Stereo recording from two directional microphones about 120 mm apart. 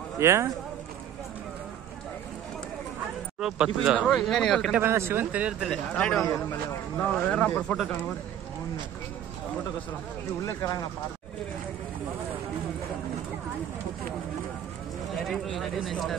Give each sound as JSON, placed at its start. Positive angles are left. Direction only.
{"t": 0.2, "sound": "speech", "side_deg": -20}
{"t": 3.3, "sound": "speech", "side_deg": -5}
{"t": 4.1, "sound": "speech", "side_deg": 5}
{"t": 4.7, "sound": "speech", "side_deg": -20}
{"t": 5.7, "sound": "speech", "side_deg": 10}
{"t": 10.4, "sound": "speech", "side_deg": 30}
{"t": 15.2, "sound": "speech", "side_deg": 0}